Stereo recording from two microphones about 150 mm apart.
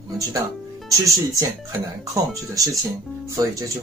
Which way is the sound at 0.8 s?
20° right (ahead or behind).